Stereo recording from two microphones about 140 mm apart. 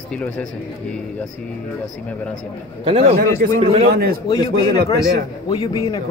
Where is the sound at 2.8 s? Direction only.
45° right (ahead or behind).